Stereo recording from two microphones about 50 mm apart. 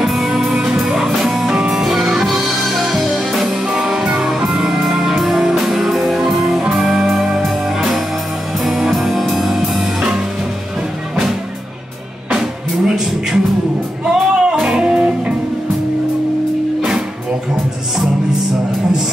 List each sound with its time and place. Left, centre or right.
0.0 s music: centre
12.4 s music: centre